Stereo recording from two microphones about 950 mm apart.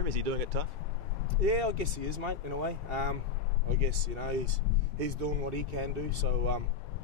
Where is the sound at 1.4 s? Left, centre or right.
Right.